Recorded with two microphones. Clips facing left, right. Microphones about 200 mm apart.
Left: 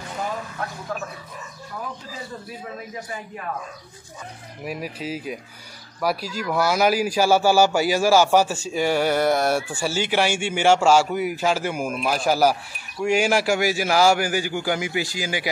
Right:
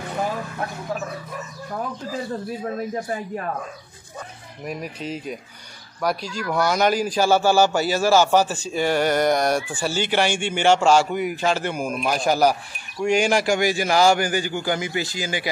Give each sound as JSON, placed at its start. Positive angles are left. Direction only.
{"t": 2.6, "sound": "a man's voice", "side_deg": -50}
{"t": 4.6, "sound": "speech", "side_deg": 5}